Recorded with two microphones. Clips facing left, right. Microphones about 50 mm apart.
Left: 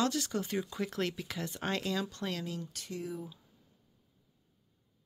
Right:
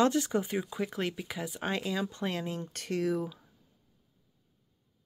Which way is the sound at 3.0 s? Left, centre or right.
Right.